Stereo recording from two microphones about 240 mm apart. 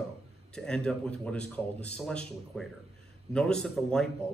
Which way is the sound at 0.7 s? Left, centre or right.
Centre.